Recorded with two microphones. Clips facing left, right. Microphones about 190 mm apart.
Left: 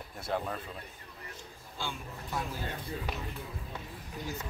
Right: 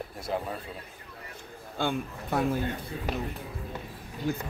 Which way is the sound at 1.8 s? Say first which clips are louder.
Right 10 dB; 60° right (ahead or behind).